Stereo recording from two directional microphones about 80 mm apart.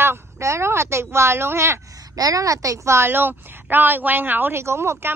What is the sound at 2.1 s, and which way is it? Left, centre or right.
A woman's voice, right.